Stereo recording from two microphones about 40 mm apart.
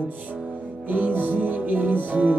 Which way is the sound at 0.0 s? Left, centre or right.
Right.